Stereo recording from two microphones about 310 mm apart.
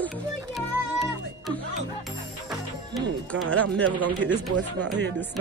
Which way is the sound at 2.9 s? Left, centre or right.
Centre.